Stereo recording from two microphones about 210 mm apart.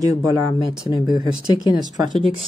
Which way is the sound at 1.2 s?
20° right (ahead or behind).